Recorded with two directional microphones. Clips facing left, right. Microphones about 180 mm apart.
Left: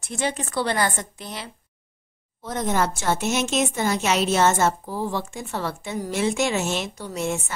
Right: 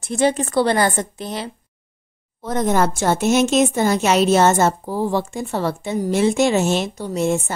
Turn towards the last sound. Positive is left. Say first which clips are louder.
# right 7 dB
turn(degrees=-30)  # may be behind; listen again after turning